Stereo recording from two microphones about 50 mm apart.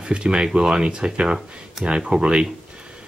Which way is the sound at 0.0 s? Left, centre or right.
Centre.